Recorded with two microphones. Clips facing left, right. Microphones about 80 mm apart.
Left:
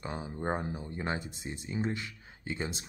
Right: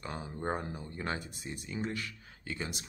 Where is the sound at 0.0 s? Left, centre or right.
Left.